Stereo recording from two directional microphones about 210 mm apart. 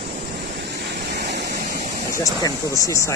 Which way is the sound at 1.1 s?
55° right (ahead or behind).